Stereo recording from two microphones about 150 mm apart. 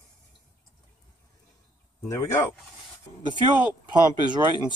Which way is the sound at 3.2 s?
30° right (ahead or behind).